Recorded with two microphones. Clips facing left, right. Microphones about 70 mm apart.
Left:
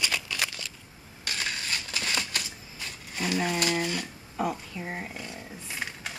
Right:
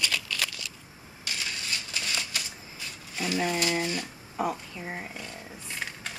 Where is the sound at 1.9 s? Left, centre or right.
Left.